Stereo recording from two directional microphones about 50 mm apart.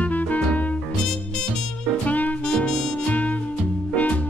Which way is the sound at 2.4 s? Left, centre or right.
Centre.